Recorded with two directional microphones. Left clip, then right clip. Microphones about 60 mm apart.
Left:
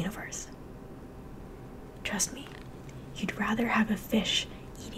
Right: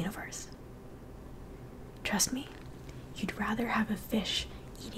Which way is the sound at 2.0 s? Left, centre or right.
Centre.